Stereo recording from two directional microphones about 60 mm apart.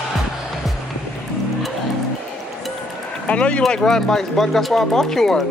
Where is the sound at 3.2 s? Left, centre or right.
Left.